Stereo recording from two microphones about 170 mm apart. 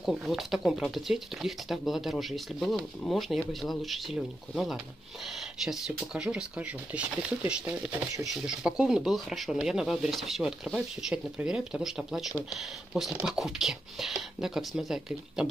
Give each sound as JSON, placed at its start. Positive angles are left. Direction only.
{"t": 0.0, "sound": "speech", "side_deg": 0}